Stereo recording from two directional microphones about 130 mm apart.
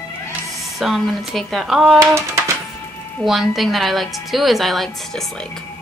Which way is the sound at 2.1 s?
20° right (ahead or behind).